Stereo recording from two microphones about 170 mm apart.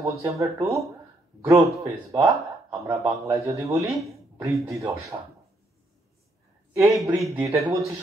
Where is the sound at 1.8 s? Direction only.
20° right (ahead or behind).